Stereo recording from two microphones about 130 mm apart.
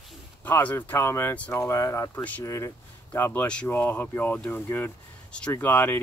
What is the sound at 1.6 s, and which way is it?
Speech, 25° left (ahead or behind).